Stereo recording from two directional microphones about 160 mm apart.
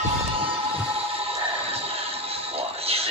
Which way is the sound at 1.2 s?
40° right (ahead or behind).